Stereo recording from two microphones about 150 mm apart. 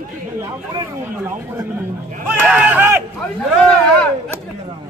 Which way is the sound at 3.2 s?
5° left (ahead or behind).